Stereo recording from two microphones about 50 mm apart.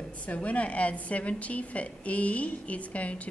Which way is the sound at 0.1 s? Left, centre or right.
Left.